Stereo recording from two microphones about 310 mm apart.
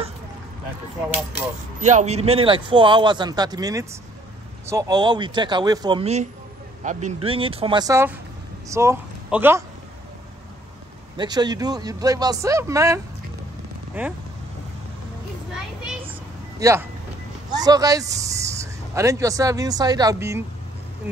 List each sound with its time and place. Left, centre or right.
1.8 s speech: right; by 9.6 s centre
11.1 s speech: centre
15.5 s a sound: centre
16.5 s speech: centre